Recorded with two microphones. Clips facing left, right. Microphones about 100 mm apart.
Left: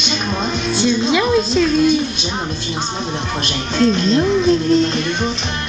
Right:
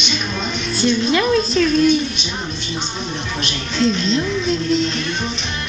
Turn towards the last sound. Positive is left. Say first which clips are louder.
# left 5 dB
turn(degrees=45)  # may be behind; listen again after turning